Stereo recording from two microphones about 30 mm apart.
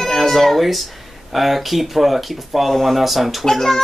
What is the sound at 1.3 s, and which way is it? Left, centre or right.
Speech, centre.